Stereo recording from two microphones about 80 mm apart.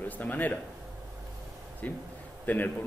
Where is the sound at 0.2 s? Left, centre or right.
Left.